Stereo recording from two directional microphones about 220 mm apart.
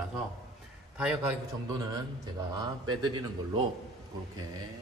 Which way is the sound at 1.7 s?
20° right (ahead or behind).